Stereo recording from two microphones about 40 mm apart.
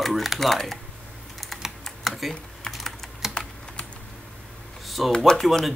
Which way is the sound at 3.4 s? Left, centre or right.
Left.